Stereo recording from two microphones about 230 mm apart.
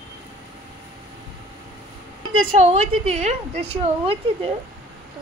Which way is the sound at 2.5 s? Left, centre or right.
Right.